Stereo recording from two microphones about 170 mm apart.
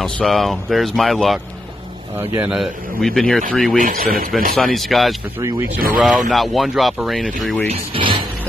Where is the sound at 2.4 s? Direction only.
Centre (ahead or behind).